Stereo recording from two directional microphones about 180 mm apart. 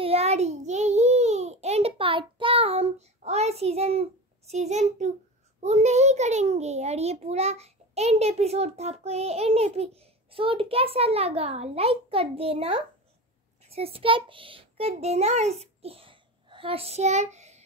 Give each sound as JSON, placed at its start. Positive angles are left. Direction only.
{"t": 0.0, "sound": "a child's voice", "side_deg": -35}